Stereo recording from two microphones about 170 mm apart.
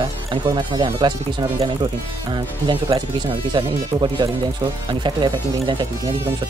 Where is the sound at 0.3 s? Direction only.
30° right (ahead or behind).